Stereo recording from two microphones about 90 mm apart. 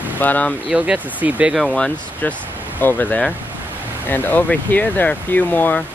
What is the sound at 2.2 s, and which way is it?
Speech, 20° left (ahead or behind).